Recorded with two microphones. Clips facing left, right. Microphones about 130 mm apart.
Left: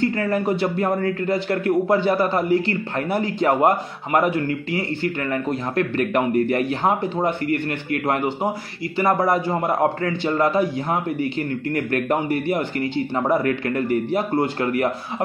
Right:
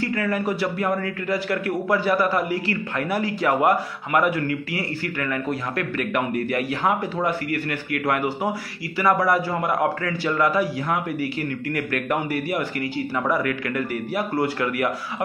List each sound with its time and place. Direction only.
0.0 s a man's voice: 30° left (ahead or behind)
0.9 s speech: 40° left (ahead or behind)
1.3 s a man's voice: 25° left (ahead or behind)